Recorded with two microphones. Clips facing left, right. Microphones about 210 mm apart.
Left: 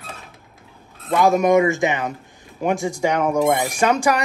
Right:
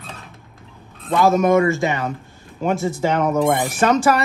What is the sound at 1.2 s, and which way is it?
Speech, 15° left (ahead or behind).